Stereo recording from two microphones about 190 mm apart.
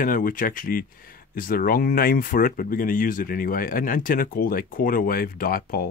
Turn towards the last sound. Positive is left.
turn(degrees=50)  # may be behind; listen again after turning